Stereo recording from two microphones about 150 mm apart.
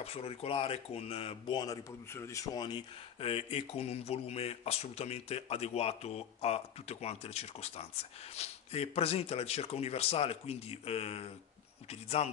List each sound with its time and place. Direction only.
0.0 s speech: 40° left (ahead or behind)
1.6 s speech: 20° left (ahead or behind)
3.2 s speech: 40° left (ahead or behind)